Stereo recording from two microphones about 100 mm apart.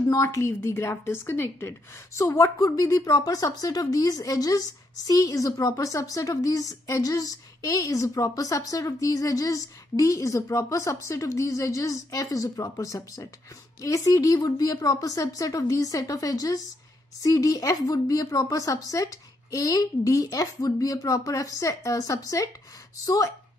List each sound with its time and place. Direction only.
0.1 s a woman's voice: 30° left (ahead or behind)